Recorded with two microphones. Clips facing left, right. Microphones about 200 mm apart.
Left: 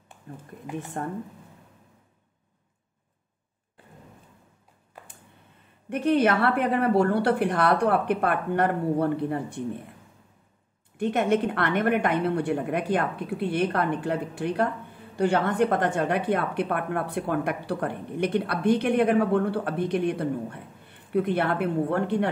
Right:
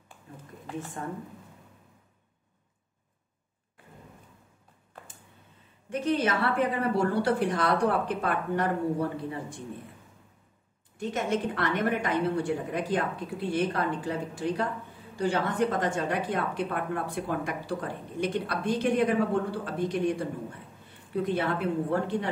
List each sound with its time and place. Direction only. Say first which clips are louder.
5.9 s a woman's voice: left 5 dB; 60° left (ahead or behind)
11.0 s a woman's voice: left 6 dB; 60° left (ahead or behind)